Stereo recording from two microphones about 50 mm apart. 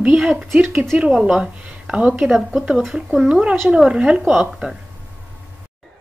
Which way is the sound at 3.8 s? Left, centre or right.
Centre.